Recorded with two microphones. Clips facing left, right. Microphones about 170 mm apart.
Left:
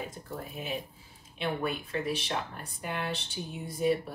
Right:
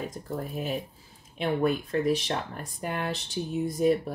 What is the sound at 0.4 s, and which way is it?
Speech, 40° right (ahead or behind).